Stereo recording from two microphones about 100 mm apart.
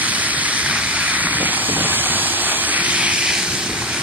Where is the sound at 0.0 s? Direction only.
15° right (ahead or behind).